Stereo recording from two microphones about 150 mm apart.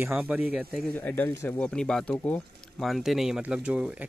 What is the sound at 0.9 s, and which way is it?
Speech, 10° left (ahead or behind).